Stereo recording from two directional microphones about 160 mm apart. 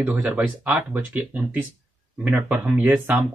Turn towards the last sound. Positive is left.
turn(degrees=-10)  # may be behind; listen again after turning